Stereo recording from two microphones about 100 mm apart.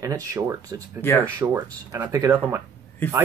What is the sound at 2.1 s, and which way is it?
Speech, 30° right (ahead or behind).